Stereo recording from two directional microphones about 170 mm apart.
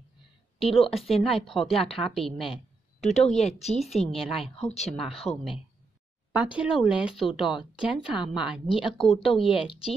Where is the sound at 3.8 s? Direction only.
Centre (ahead or behind).